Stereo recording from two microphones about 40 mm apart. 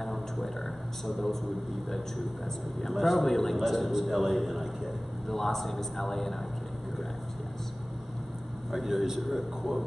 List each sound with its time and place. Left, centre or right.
1.0 s a man's voice: centre
2.8 s a man's voice: centre
8.7 s a man's voice: centre